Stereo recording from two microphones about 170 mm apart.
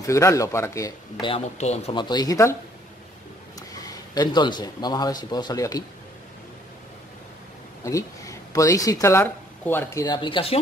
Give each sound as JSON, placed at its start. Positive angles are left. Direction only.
{"t": 0.0, "sound": "speech", "side_deg": 15}
{"t": 1.2, "sound": "speech", "side_deg": 35}
{"t": 2.0, "sound": "speech", "side_deg": 25}
{"t": 3.7, "sound": "speech", "side_deg": 20}
{"t": 7.8, "sound": "speech", "side_deg": 20}